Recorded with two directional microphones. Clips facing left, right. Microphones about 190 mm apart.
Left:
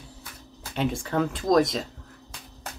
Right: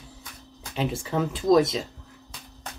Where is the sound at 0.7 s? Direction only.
Centre (ahead or behind).